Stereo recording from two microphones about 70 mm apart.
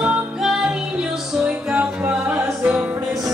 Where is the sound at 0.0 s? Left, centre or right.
Centre.